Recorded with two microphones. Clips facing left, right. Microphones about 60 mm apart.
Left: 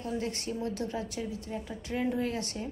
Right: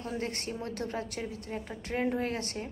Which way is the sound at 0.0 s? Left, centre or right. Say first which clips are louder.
Left 1 dB; right.